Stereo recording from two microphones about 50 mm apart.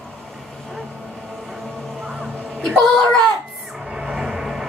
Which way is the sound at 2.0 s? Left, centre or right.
Centre.